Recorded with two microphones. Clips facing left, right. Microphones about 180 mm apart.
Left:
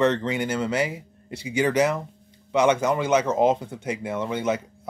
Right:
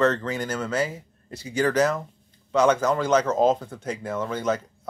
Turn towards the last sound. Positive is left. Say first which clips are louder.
# left 1 dB
turn(degrees=15)  # may be behind; listen again after turning